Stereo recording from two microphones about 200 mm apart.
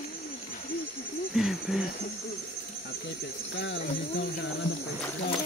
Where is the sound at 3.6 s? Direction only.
65° left (ahead or behind).